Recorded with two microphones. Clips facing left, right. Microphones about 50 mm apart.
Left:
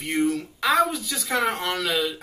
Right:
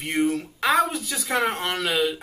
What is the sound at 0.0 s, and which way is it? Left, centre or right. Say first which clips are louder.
Speech: even; centre.